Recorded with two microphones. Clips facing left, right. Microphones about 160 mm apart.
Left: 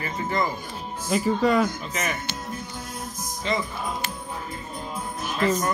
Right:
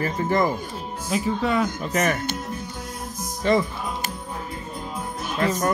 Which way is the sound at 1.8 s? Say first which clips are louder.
Right 7 dB; 50° right (ahead or behind).